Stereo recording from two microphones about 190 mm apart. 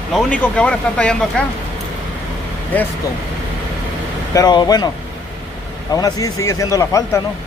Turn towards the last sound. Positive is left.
turn(degrees=15)  # may be behind; listen again after turning